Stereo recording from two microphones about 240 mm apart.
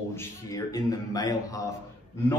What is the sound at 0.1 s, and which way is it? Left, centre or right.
A man's voice, centre.